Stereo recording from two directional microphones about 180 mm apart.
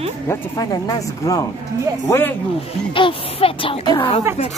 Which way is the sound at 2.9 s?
30° left (ahead or behind).